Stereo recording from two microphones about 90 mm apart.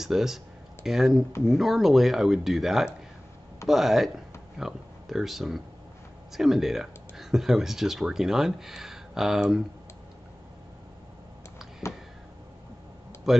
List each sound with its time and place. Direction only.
0.0 s speech: 5° right (ahead or behind)
11.8 s a sound: 30° left (ahead or behind)
13.3 s speech: 5° right (ahead or behind)